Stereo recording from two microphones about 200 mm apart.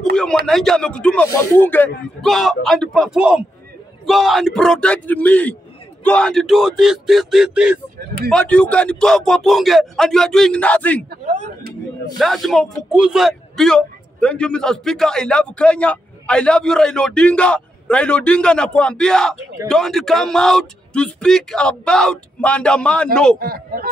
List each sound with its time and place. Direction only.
0.1 s speech: 5° left (ahead or behind)
8.3 s speech: 5° left (ahead or behind)
11.1 s speech: 35° right (ahead or behind)
12.2 s speech: centre (ahead or behind)
23.4 s a man's voice: 45° right (ahead or behind)